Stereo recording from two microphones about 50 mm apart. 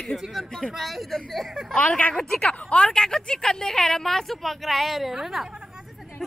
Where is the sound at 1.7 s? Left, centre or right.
Centre.